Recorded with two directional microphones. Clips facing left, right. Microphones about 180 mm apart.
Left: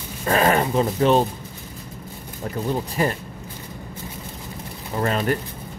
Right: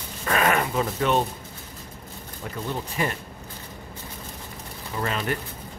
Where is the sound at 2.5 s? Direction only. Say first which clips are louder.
Left 6 dB; 35° left (ahead or behind).